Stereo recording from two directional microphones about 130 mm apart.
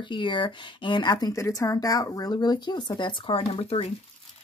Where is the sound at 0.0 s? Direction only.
40° left (ahead or behind).